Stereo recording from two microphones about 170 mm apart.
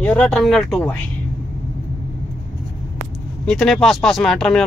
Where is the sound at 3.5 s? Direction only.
5° left (ahead or behind).